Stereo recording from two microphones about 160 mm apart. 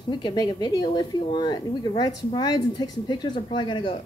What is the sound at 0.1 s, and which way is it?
Speech, 30° left (ahead or behind).